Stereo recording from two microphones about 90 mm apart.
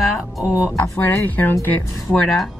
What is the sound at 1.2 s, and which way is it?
Speech, 20° left (ahead or behind).